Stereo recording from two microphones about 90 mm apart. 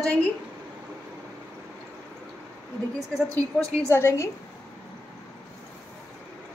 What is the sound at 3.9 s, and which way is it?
Speech, 25° left (ahead or behind).